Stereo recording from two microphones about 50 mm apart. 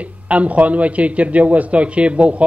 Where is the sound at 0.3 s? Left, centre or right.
Right.